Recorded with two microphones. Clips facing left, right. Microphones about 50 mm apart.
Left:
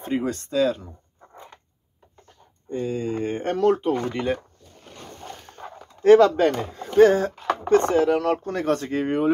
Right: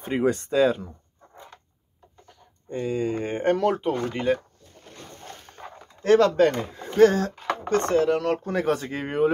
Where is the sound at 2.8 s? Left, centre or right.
Right.